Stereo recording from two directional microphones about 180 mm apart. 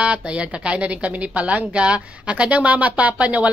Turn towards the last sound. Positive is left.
turn(degrees=-5)  # may be behind; listen again after turning